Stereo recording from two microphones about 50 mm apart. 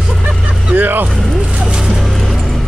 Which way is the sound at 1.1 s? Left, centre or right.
Centre.